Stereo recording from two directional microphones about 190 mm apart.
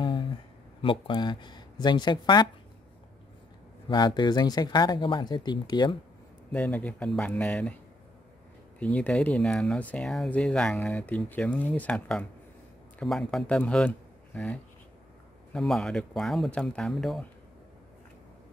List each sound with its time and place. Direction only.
0.8 s speech: 25° left (ahead or behind)
3.9 s speech: 20° left (ahead or behind)
6.5 s speech: 10° left (ahead or behind)